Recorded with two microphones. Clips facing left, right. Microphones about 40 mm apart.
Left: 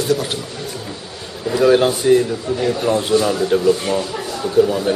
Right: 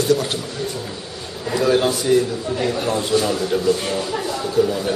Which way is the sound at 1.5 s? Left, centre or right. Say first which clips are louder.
Left 4 dB; centre.